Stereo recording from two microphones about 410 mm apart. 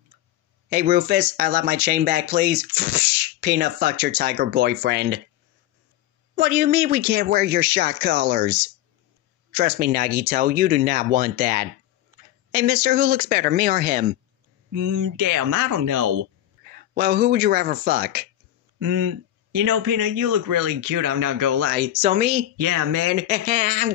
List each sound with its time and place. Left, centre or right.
0.7 s speech: right
6.3 s speech: right
14.7 s speech: right
16.2 s speech: right
18.8 s speech: right
21.6 s speech: centre
22.6 s speech: right
23.1 s speech: centre